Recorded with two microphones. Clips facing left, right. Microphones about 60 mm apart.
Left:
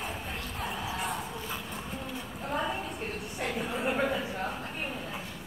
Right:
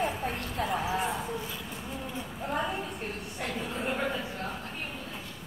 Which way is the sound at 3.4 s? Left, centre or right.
Centre.